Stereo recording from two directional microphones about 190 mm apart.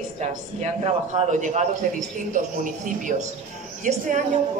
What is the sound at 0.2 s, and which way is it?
Speech, 40° right (ahead or behind).